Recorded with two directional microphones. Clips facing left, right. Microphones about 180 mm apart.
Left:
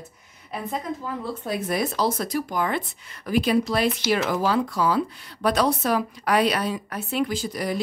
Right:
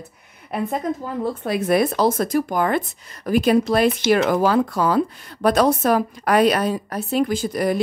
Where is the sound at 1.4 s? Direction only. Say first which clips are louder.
Right 7 dB; 70° right (ahead or behind); by 7.7 s 50° right (ahead or behind).